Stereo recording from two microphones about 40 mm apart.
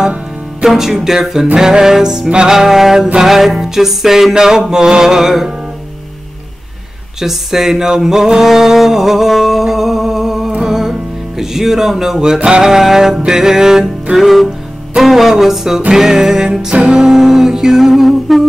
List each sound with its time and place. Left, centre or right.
0.7 s music: centre
2.5 s music: centre
7.2 s a sound: centre
10.5 s music: centre